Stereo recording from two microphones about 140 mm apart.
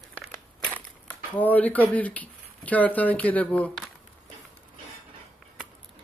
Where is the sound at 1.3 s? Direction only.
10° left (ahead or behind).